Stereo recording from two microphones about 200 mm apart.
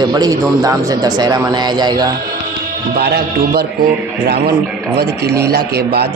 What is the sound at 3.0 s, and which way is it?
Speech, 50° right (ahead or behind).